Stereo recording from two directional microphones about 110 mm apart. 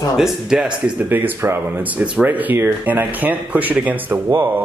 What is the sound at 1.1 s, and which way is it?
Speech, 20° right (ahead or behind).